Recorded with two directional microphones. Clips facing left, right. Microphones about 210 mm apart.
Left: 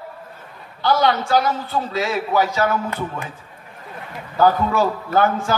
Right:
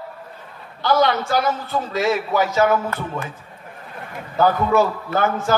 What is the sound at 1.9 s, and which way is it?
Speech, 45° right (ahead or behind).